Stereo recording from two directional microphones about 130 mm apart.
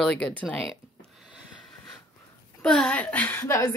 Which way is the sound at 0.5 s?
5° left (ahead or behind).